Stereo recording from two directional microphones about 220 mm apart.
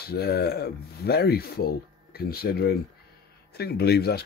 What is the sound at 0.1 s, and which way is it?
Speech, 45° left (ahead or behind).